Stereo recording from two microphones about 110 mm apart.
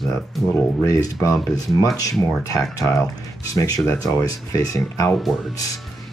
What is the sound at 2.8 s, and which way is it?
Speech, 30° left (ahead or behind).